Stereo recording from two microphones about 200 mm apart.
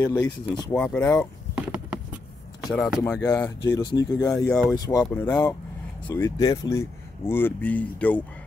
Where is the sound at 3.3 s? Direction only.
20° left (ahead or behind).